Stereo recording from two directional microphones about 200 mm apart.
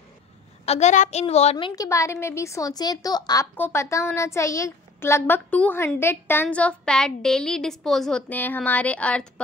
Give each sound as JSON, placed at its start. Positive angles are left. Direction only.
{"t": 0.7, "sound": "a child's voice", "side_deg": 35}
{"t": 1.8, "sound": "a woman's voice", "side_deg": 15}